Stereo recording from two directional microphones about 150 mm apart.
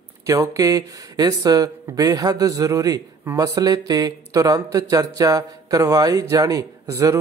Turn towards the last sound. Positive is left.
turn(degrees=-20)  # may be behind; listen again after turning